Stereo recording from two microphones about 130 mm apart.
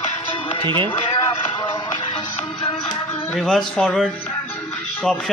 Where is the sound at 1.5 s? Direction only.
25° left (ahead or behind).